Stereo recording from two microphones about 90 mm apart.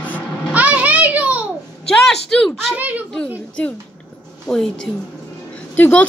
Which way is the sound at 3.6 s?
15° left (ahead or behind).